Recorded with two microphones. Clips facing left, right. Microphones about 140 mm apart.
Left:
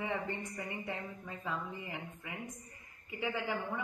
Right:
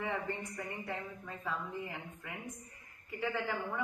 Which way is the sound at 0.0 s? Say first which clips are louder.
Even; 20° left (ahead or behind).